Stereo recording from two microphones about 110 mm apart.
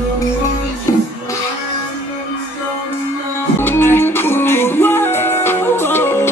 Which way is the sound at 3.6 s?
20° left (ahead or behind).